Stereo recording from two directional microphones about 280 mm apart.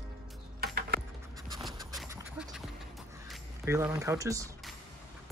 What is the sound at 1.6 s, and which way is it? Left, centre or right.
Scratch, centre.